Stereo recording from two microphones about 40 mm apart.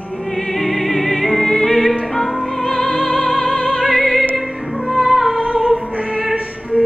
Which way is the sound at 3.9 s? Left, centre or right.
Centre.